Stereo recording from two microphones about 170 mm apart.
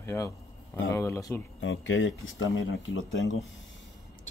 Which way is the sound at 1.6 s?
90° left.